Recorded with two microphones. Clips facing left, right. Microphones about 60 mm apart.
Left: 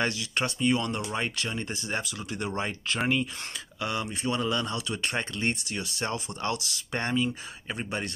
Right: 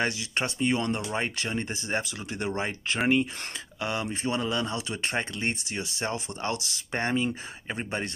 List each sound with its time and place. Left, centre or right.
0.0 s speech: right